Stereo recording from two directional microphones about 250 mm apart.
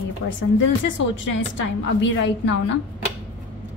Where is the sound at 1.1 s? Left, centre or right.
Left.